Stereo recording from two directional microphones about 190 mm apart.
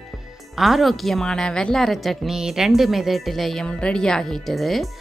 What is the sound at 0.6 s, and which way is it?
Speech, centre (ahead or behind).